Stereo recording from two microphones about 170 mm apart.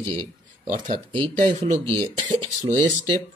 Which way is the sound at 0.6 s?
50° right (ahead or behind).